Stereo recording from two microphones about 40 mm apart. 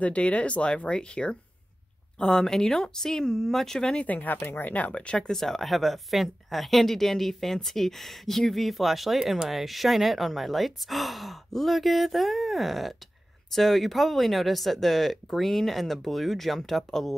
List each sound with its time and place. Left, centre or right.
0.0 s speech: left; by 3.3 s centre
3.3 s speech: centre
3.8 s speech: left
4.1 s speech: left
4.4 s speech: left
4.6 s speech: left
5.2 s speech: centre